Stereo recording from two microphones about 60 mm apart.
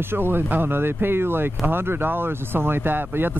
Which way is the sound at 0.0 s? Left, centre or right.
Right.